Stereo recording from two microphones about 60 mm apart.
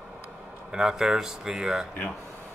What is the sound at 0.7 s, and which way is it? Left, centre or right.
A man's voice, centre.